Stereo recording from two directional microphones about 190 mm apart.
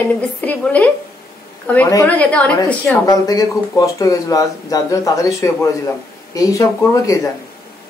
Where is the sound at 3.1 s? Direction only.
20° left (ahead or behind).